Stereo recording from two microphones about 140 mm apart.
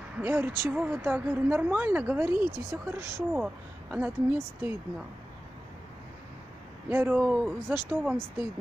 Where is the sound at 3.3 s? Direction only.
10° right (ahead or behind).